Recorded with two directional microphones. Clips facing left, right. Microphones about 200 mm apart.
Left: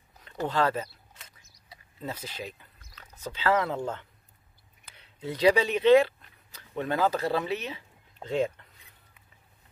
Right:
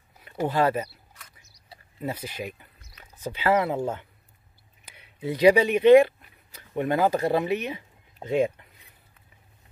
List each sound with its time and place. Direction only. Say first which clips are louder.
0.2 s speech: right 3 dB; 10° right (ahead or behind)
2.0 s speech: right 5 dB; 10° right (ahead or behind)